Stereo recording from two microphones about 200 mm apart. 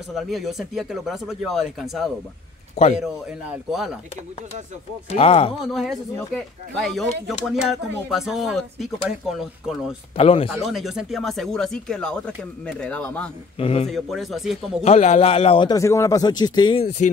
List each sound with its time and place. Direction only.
0.1 s speech: centre (ahead or behind)
2.7 s a man's voice: 35° left (ahead or behind)
3.0 s speech: centre (ahead or behind)
5.1 s a man's voice: 30° left (ahead or behind)
5.7 s speech: centre (ahead or behind)
10.1 s a man's voice: 30° left (ahead or behind)
10.6 s speech: centre (ahead or behind)
13.6 s a man's voice: 30° left (ahead or behind)
13.8 s speech: centre (ahead or behind)
14.9 s a man's voice: 35° left (ahead or behind)